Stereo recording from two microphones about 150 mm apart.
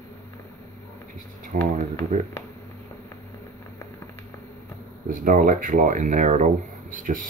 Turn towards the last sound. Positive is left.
turn(degrees=-65)  # may be behind; listen again after turning